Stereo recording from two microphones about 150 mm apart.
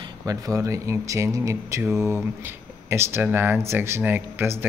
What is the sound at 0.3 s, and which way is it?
Speech, 20° right (ahead or behind).